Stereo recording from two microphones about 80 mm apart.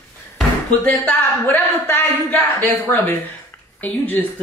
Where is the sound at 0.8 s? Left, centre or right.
Left.